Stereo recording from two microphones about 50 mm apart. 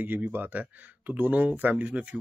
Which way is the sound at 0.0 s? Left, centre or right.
Right.